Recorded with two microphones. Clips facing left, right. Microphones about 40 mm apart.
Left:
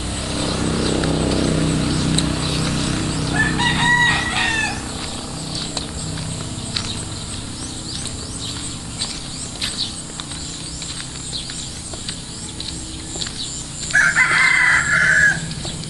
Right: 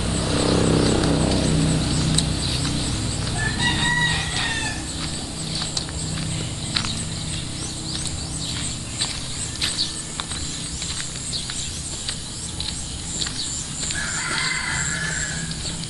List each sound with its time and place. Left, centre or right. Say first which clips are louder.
0.2 s vehicle: right 3 dB; right
0.8 s vehicle: left 1 dB; left
1.4 s vehicle: left 3 dB; left
2.2 s vehicle: left 4 dB; left
2.7 s a sound: left 5 dB; left
3.3 s chicken: left 5 dB; left
13.9 s chicken: left 13 dB; left